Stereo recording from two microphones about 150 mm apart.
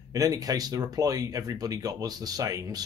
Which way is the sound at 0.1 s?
25° right (ahead or behind).